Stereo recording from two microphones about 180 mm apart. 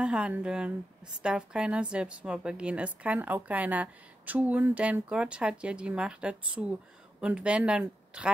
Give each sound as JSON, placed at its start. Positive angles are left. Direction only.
{"t": 0.0, "sound": "a woman's voice", "side_deg": -5}